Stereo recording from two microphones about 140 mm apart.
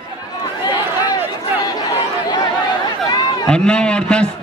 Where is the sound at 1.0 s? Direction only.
30° left (ahead or behind).